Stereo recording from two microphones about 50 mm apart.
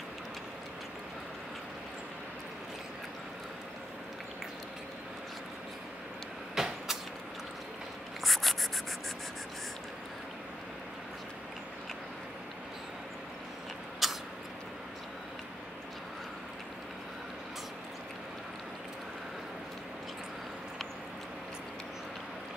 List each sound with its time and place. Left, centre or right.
6.5 s vehicle: centre
8.2 s writing: centre
14.0 s vehicle: centre